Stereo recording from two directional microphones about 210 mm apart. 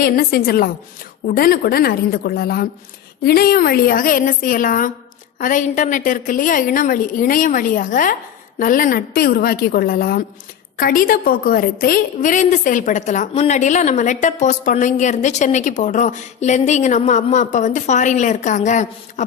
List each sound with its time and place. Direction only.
0.0 s a woman's voice: 45° left (ahead or behind)